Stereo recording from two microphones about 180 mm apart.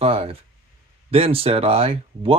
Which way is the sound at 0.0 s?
35° right (ahead or behind).